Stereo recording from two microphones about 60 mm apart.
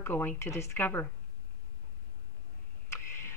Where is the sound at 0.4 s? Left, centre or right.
Left.